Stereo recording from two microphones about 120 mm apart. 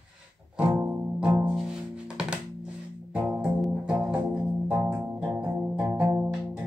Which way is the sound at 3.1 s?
10° right (ahead or behind).